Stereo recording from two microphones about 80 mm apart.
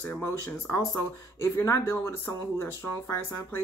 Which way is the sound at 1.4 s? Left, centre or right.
Left.